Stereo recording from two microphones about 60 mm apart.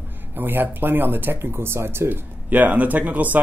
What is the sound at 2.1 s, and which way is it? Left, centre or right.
Speech, right.